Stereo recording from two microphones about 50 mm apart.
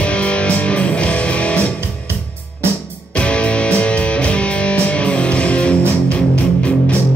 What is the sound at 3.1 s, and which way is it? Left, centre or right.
Music, left.